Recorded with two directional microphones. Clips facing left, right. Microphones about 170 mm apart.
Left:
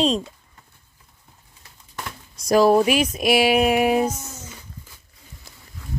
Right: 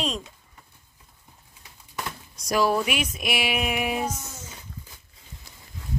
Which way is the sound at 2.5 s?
35° left (ahead or behind).